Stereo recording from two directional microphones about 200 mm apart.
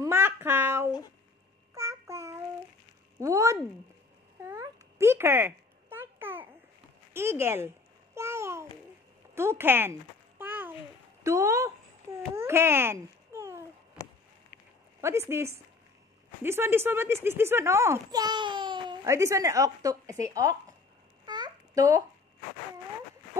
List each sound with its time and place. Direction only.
0.0 s a sound: 10° right (ahead or behind)
1.8 s child singing: 15° right (ahead or behind)
3.2 s speech: 15° right (ahead or behind)
4.4 s a sound: 15° right (ahead or behind)
7.2 s babbling: 10° right (ahead or behind)
9.3 s speech: 15° right (ahead or behind)
10.4 s a sound: 10° right (ahead or behind)
11.2 s a child's voice: 15° right (ahead or behind)
12.4 s babbling: 10° right (ahead or behind)
15.0 s a child's voice: 15° right (ahead or behind)
21.3 s babbling: 20° right (ahead or behind)